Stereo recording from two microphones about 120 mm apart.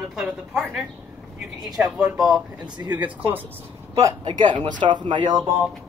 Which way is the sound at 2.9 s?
15° right (ahead or behind).